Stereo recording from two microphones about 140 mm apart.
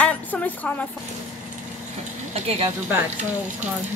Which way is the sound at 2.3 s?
50° right (ahead or behind).